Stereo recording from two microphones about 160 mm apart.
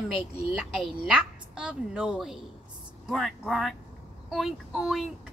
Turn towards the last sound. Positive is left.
turn(degrees=0)  # may be behind; listen again after turning